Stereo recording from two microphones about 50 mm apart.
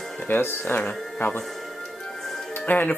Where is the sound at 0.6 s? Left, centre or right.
Left.